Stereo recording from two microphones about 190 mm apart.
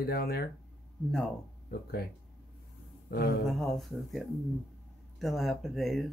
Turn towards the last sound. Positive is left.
turn(degrees=0)  # may be behind; listen again after turning